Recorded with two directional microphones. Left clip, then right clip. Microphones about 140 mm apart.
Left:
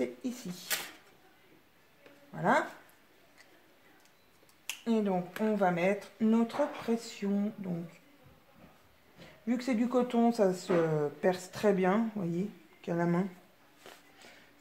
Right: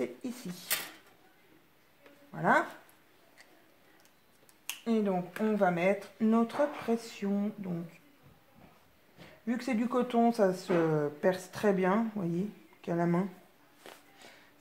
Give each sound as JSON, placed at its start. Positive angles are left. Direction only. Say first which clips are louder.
{"t": 0.0, "sound": "speech", "louder": "left 1 dB", "side_deg": -25}
{"t": 4.8, "sound": "a woman's voice", "louder": "even", "side_deg": -20}
{"t": 9.5, "sound": "a woman's voice", "louder": "left 1 dB", "side_deg": -20}